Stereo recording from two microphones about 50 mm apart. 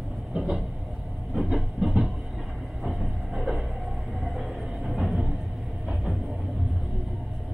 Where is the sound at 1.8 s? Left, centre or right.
Centre.